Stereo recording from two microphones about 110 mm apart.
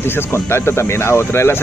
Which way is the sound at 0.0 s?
20° left (ahead or behind).